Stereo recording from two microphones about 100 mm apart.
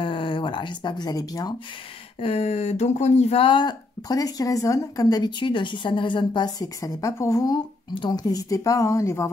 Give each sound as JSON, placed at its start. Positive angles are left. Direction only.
{"t": 0.0, "sound": "a sound", "side_deg": 55}
{"t": 2.1, "sound": "speech", "side_deg": 85}
{"t": 3.4, "sound": "a woman's voice", "side_deg": 50}
{"t": 7.5, "sound": "speech", "side_deg": 50}